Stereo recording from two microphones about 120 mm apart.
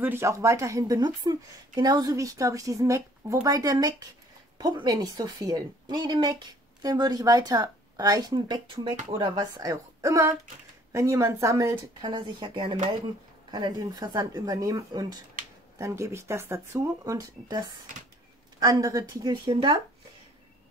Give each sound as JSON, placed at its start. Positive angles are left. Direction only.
{"t": 0.0, "sound": "a woman's voice", "side_deg": -20}
{"t": 12.0, "sound": "a woman's voice", "side_deg": -40}